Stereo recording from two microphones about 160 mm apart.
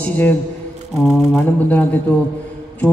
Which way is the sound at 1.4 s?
10° left (ahead or behind).